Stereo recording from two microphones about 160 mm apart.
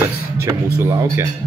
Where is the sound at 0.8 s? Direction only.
20° right (ahead or behind).